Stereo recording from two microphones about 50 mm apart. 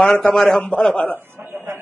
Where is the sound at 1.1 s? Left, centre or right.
Right.